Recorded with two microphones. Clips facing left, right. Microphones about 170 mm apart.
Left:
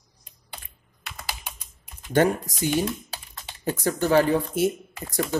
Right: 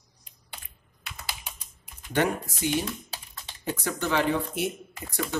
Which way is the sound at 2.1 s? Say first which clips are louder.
Left 5 dB; 40° left (ahead or behind).